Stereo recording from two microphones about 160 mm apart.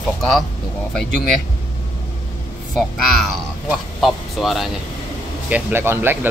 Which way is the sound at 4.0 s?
Centre (ahead or behind).